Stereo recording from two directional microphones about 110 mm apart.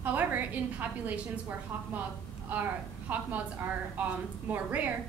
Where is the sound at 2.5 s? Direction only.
15° right (ahead or behind).